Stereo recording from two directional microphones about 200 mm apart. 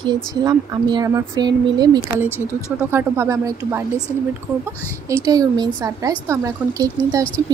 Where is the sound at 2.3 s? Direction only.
10° left (ahead or behind).